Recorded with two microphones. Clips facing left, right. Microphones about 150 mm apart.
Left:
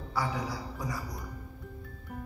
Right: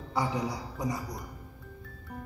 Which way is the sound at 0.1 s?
20° right (ahead or behind).